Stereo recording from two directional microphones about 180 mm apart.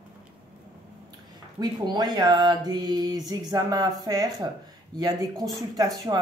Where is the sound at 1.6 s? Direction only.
20° right (ahead or behind).